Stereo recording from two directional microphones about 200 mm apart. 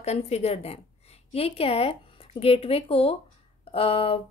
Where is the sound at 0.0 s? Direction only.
30° left (ahead or behind).